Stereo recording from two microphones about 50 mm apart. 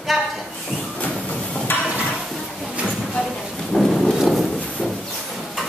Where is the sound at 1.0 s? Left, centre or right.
Left.